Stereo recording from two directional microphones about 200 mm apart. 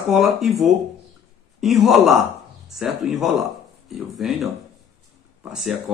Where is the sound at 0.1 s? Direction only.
Centre (ahead or behind).